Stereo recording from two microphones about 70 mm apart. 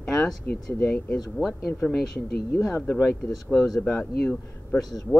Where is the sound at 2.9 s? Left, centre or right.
Centre.